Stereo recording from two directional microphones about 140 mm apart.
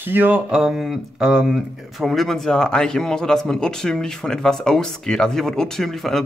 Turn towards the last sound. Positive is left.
turn(degrees=0)  # may be behind; listen again after turning